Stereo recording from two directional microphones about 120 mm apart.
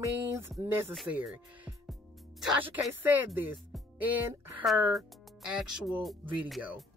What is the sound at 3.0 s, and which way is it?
Speech, 15° right (ahead or behind).